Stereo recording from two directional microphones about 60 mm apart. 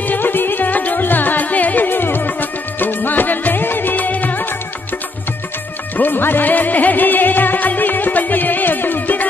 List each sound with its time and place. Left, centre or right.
0.0 s music: left
5.9 s music: left